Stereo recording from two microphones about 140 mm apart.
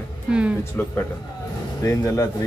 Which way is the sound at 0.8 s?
15° left (ahead or behind).